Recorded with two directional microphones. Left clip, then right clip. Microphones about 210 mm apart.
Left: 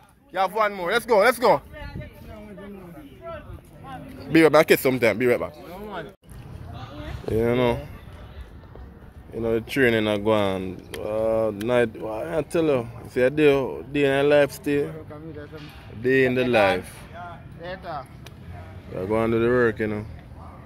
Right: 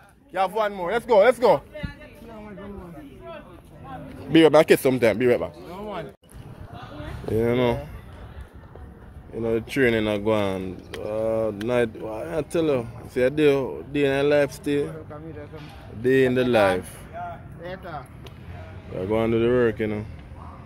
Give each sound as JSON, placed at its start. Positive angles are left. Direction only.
{"t": 0.3, "sound": "speech", "side_deg": -10}
{"t": 4.3, "sound": "speech", "side_deg": -5}
{"t": 7.3, "sound": "speech", "side_deg": 0}
{"t": 9.3, "sound": "speech", "side_deg": 5}
{"t": 16.0, "sound": "speech", "side_deg": -10}
{"t": 17.6, "sound": "speech", "side_deg": 20}
{"t": 18.9, "sound": "speech", "side_deg": -5}